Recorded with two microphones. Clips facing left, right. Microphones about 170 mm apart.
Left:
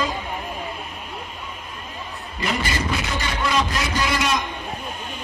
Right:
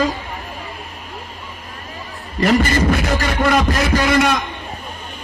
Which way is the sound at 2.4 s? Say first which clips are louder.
Right 10 dB; 50° right (ahead or behind).